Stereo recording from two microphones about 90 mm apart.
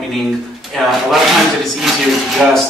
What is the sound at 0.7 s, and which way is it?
Speech, centre (ahead or behind).